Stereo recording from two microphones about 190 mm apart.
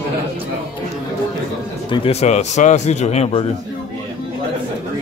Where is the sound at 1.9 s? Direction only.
30° left (ahead or behind).